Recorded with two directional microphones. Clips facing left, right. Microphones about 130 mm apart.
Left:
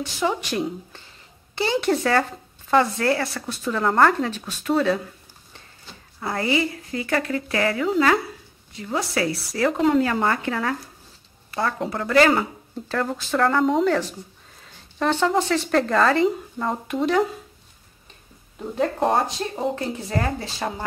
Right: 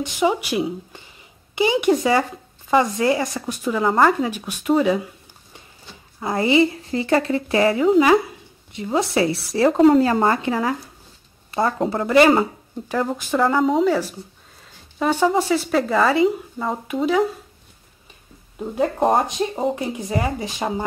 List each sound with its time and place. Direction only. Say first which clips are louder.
0.0 s speech: right 4 dB; 15° right (ahead or behind)
11.8 s speech: right 3 dB; 25° right (ahead or behind); by 17.3 s 5° right (ahead or behind)
19.1 s speech: right 3 dB; 20° right (ahead or behind)